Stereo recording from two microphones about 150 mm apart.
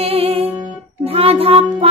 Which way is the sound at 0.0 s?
40° right (ahead or behind).